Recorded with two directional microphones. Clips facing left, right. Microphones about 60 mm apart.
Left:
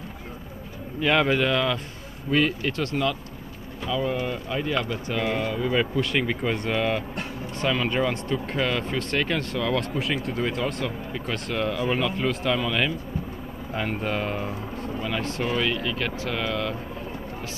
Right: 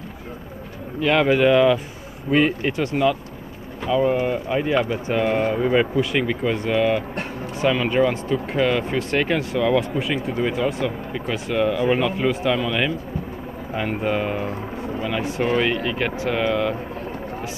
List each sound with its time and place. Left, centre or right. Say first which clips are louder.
1.0 s speech: right 5 dB; centre; by 5.9 s right
5.9 s speech: right 4 dB; centre
9.9 s speech: right 4 dB; centre